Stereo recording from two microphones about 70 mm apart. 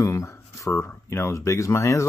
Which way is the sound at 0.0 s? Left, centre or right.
Left.